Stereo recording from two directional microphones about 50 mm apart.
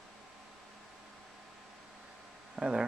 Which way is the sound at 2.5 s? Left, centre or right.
Centre.